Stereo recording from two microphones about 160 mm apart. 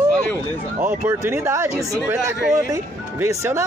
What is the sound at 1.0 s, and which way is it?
Speech, 15° right (ahead or behind).